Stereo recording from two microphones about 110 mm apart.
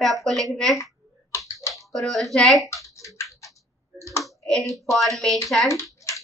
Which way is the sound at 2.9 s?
30° left (ahead or behind).